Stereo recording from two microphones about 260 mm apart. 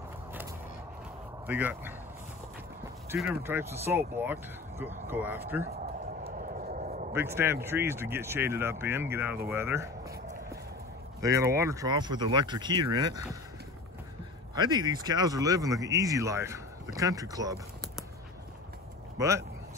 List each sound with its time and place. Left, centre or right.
1.5 s speech: centre
3.1 s speech: centre
6.3 s a sound: right
7.1 s speech: centre
11.1 s speech: centre
14.5 s speech: centre
19.1 s speech: centre